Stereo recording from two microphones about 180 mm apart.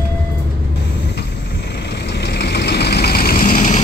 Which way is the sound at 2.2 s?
70° left (ahead or behind).